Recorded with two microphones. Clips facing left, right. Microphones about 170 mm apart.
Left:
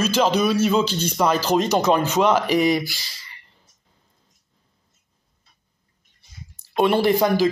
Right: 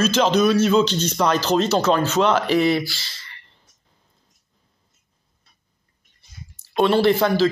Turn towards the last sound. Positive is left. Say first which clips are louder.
# right 1 dB
turn(degrees=15)  # may be behind; listen again after turning